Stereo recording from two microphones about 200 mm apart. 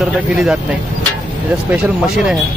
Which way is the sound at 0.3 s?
5° right (ahead or behind).